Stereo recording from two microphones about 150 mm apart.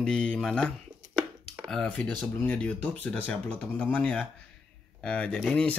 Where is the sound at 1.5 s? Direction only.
5° right (ahead or behind).